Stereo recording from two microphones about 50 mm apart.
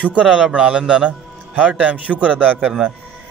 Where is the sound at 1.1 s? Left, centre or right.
Right.